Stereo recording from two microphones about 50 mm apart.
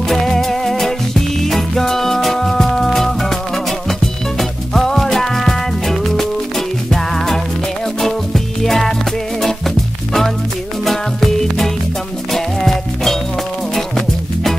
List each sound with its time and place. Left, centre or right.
0.1 s music: centre
8.6 s music: centre
10.9 s music: centre